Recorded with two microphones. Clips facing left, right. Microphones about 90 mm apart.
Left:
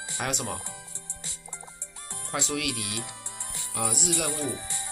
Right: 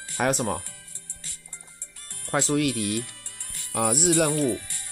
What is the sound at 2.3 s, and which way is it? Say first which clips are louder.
Speech: right 7 dB; 40° right (ahead or behind).